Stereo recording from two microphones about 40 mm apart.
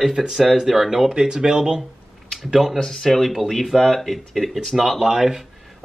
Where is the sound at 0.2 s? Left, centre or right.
Centre.